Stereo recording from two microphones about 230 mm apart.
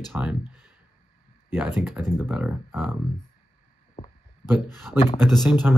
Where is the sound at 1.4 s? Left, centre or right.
Centre.